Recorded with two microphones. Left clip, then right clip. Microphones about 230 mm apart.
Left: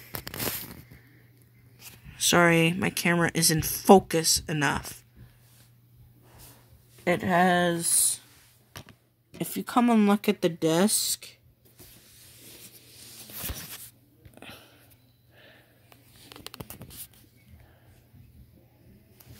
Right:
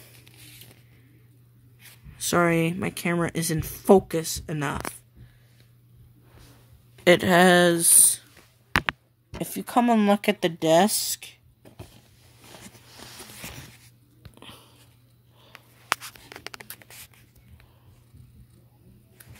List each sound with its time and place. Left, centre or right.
2.0 s speech: centre
7.1 s speech: right
9.3 s speech: centre
14.3 s sniff: centre
16.3 s a sound: left